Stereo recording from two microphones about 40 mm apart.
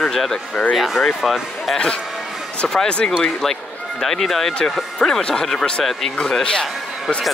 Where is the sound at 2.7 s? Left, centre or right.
Left.